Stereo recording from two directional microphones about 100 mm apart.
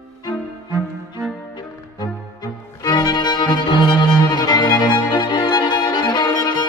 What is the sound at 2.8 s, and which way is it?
Violin, 45° left (ahead or behind).